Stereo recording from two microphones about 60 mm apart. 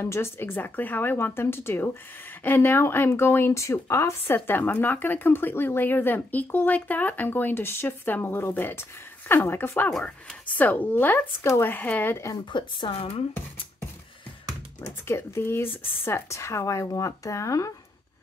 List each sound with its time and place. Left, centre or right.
0.0 s a woman's voice: left
10.0 s a woman's voice: left
12.1 s speech: left
15.0 s speech: left